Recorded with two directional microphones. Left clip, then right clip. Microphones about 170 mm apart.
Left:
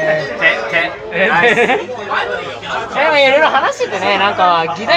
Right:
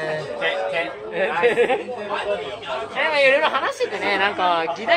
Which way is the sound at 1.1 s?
Centre (ahead or behind).